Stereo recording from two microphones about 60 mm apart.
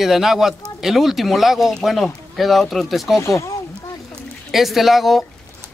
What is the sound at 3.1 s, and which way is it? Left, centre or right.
Speech, left.